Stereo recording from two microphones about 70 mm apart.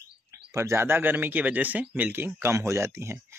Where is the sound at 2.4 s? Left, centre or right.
Right.